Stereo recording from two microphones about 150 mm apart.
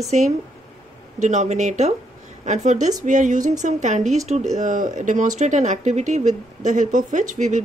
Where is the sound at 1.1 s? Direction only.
50° right (ahead or behind).